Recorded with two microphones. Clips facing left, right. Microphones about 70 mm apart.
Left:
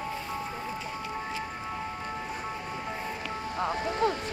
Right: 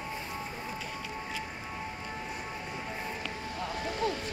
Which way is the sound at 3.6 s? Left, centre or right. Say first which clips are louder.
Left 6 dB; left.